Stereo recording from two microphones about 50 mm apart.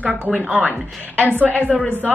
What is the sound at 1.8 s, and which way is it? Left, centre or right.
Speech, left.